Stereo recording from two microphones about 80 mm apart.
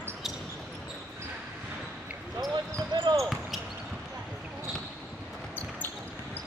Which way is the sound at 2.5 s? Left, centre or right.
Right.